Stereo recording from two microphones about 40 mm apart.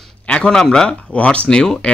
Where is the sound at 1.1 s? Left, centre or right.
Left.